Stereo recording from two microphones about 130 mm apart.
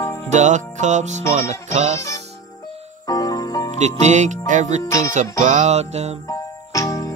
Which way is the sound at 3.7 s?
65° right (ahead or behind).